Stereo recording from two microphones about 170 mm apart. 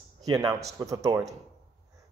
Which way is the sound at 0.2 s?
20° right (ahead or behind).